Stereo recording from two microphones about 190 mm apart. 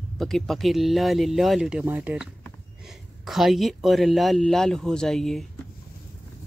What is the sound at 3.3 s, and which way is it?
Speech, centre (ahead or behind).